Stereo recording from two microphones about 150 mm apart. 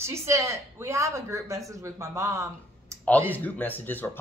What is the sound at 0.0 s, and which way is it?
Speech, 20° right (ahead or behind).